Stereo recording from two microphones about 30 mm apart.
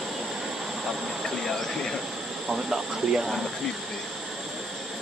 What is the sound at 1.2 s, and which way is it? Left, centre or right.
Speech, centre.